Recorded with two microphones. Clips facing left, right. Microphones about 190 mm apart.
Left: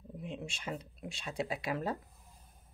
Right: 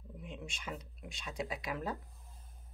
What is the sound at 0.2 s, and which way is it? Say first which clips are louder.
Speech: left 4 dB; 30° left (ahead or behind).